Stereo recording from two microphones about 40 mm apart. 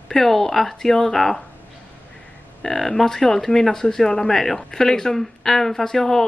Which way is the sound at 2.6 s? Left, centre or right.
Centre.